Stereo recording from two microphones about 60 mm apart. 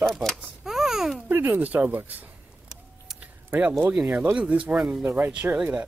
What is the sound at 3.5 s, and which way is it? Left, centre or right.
Speech, right.